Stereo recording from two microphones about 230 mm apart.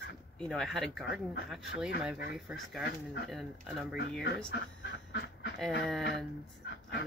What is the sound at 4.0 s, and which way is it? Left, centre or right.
Speech, left.